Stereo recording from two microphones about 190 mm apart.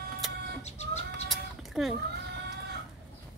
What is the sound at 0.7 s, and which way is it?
Chicken, 35° left (ahead or behind).